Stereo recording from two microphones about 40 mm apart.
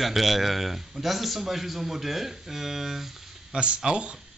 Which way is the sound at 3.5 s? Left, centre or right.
Right.